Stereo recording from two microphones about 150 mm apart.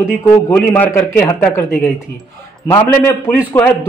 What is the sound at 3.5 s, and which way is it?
Speech, 15° left (ahead or behind).